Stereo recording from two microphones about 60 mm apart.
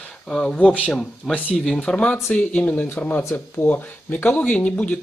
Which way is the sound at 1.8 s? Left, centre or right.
Centre.